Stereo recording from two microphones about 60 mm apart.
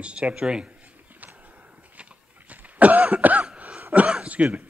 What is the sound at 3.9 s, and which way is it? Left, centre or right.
Speech, centre.